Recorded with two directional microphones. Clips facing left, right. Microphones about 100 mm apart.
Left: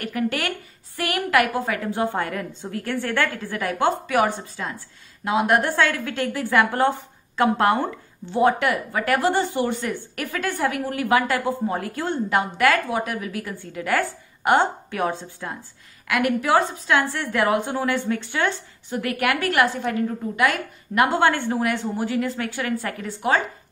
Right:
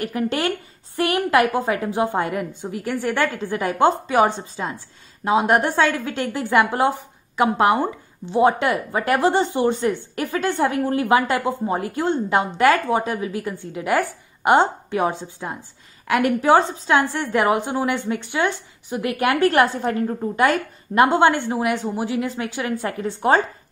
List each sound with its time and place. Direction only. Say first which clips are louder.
0.0 s a woman's voice: right 3 dB; 25° right (ahead or behind)